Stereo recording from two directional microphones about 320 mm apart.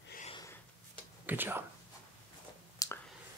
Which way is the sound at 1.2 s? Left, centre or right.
Centre.